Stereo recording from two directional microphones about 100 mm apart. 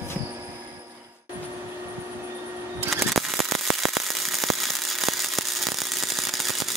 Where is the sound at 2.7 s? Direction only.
25° right (ahead or behind).